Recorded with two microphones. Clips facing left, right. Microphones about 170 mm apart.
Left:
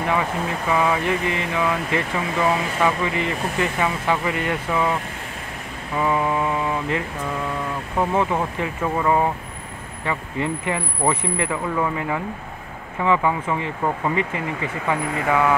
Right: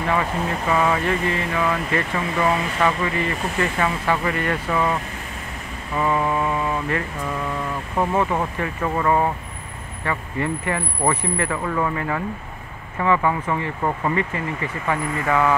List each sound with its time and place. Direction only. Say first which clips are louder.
0.7 s speech: even; 10° left (ahead or behind)
5.9 s mantra: even; 10° left (ahead or behind)
8.0 s speech: even; 10° left (ahead or behind)